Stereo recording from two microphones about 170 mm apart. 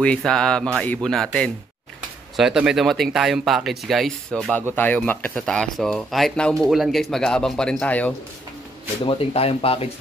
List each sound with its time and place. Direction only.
0.0 s speech: 5° left (ahead or behind)
9.0 s speech: 35° left (ahead or behind)